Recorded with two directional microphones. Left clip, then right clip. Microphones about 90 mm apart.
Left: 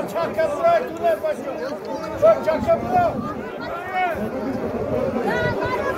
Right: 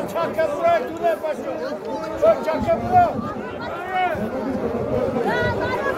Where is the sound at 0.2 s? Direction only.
30° right (ahead or behind).